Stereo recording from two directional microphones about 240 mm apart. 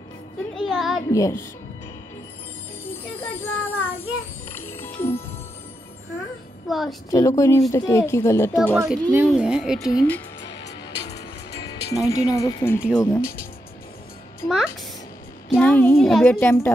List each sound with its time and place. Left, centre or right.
0.6 s a sound: centre
1.1 s speech: centre
2.8 s music: centre
6.7 s speech: centre
7.1 s speech: centre
8.5 s speech: centre
9.8 s speech: centre
10.5 s music: left
11.9 s speech: centre
14.4 s a child's voice: centre